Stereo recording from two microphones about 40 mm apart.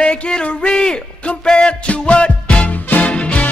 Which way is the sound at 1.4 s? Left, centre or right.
Left.